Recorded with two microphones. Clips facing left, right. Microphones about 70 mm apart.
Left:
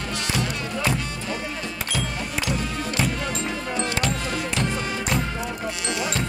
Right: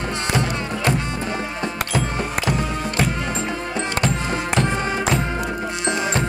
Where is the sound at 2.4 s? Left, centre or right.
Right.